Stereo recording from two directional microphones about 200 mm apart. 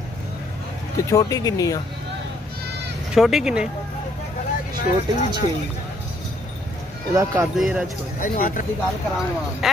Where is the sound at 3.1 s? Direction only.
Centre (ahead or behind).